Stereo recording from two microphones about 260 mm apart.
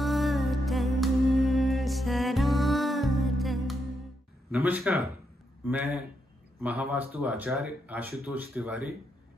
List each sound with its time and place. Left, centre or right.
0.0 s music: centre
4.5 s speech: centre
6.6 s speech: centre